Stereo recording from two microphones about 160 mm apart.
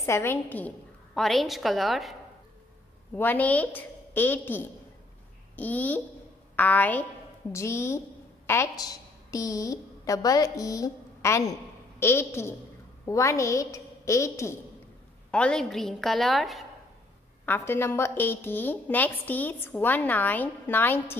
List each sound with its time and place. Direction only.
0.0 s a woman's voice: 15° left (ahead or behind); by 2.1 s centre (ahead or behind)
3.2 s a woman's voice: 10° left (ahead or behind)
15.3 s a woman's voice: 5° left (ahead or behind)
17.5 s a woman's voice: 15° left (ahead or behind)